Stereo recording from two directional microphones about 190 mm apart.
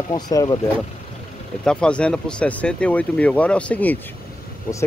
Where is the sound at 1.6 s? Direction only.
5° left (ahead or behind).